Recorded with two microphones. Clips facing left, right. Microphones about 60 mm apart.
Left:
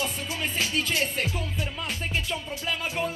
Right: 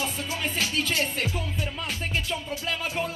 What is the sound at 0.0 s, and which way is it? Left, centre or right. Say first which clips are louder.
Music: right 1 dB; left.